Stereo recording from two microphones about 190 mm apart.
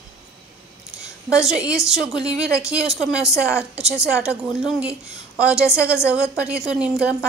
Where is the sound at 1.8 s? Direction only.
Centre (ahead or behind).